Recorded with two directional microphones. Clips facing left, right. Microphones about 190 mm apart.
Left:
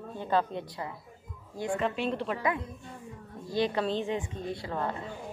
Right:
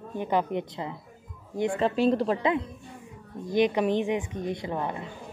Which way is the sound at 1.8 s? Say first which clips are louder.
Right 9 dB; 35° right (ahead or behind).